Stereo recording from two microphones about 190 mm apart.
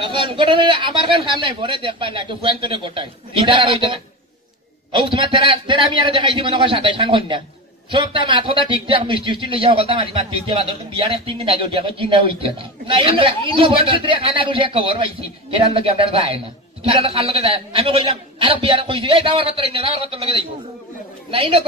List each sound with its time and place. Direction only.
0.0 s a man's voice: 25° right (ahead or behind)
4.9 s a man's voice: 25° right (ahead or behind)